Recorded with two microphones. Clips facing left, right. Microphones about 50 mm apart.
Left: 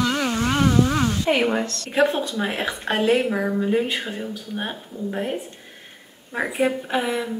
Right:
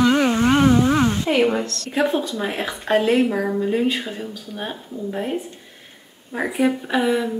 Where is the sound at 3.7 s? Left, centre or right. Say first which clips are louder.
Right 2 dB; centre.